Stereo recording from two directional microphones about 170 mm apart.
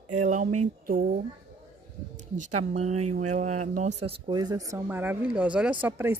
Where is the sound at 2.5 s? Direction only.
40° right (ahead or behind).